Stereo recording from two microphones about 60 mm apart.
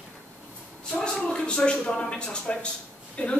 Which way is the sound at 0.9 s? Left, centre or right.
Centre.